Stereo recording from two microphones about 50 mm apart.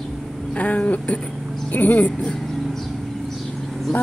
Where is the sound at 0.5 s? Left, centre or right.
Left.